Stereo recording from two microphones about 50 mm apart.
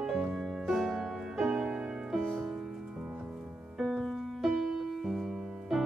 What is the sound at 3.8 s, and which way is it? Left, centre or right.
Music, centre.